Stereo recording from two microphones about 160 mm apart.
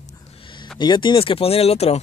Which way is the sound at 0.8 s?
30° left (ahead or behind).